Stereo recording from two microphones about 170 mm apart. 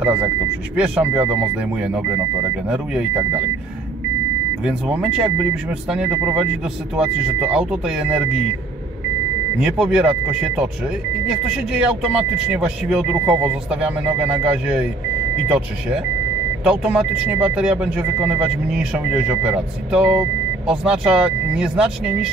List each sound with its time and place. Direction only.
0.0 s speech: 10° right (ahead or behind)
4.6 s speech: 5° right (ahead or behind)
9.6 s speech: 5° right (ahead or behind)
11.7 s speech: 5° right (ahead or behind)